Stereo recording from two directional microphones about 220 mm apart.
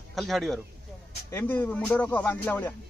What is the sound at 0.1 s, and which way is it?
Speech, centre (ahead or behind).